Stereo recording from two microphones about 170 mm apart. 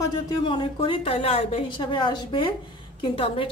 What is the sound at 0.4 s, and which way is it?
A woman's voice, 30° left (ahead or behind).